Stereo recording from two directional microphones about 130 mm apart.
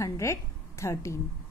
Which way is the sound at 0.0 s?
20° left (ahead or behind).